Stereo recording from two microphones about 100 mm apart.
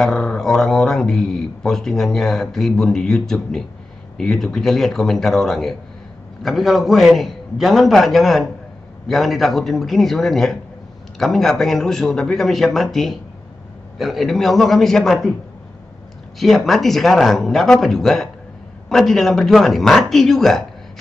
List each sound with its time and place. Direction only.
0.0 s speech: 5° left (ahead or behind)
16.3 s speech: centre (ahead or behind)